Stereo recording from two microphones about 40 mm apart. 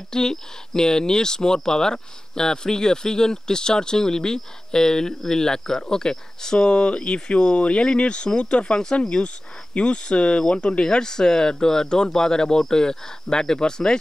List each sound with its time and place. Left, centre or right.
0.1 s speech: centre